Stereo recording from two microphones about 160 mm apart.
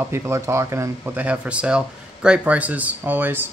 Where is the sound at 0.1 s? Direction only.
15° right (ahead or behind).